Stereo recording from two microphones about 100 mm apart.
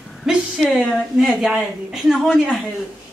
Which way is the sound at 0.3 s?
5° right (ahead or behind).